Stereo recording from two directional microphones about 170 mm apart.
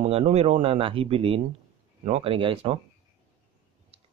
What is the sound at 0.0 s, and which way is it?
Speech, 40° right (ahead or behind).